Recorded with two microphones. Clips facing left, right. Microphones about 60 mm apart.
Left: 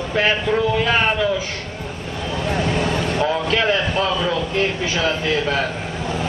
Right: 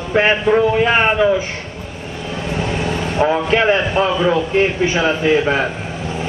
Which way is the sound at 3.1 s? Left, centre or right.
Right.